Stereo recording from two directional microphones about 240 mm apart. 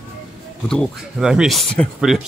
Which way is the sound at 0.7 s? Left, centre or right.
Centre.